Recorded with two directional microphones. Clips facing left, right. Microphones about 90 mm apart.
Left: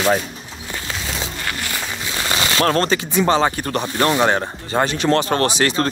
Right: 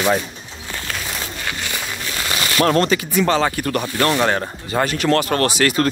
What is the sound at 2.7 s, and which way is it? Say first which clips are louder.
Speech: right 1 dB; 35° left (ahead or behind).